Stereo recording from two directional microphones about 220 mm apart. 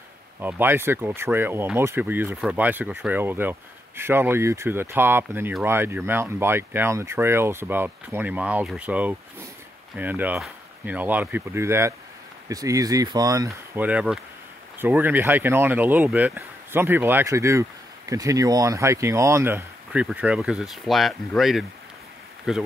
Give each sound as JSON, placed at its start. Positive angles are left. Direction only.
{"t": 0.4, "sound": "speech", "side_deg": -10}
{"t": 13.5, "sound": "speech", "side_deg": -5}